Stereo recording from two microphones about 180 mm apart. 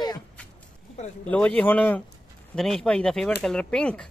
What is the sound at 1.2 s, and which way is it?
Speech, 5° left (ahead or behind).